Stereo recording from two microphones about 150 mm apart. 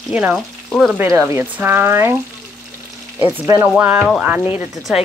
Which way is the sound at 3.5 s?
15° right (ahead or behind).